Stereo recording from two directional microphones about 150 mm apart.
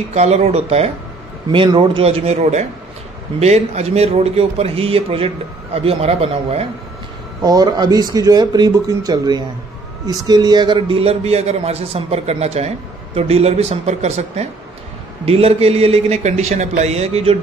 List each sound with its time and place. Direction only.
0.1 s a man's voice: 45° right (ahead or behind)
1.5 s a man's voice: 35° right (ahead or behind)
7.4 s a man's voice: 25° right (ahead or behind); by 17.4 s 45° right (ahead or behind)